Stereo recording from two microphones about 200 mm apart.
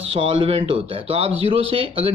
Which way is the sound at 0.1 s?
25° right (ahead or behind).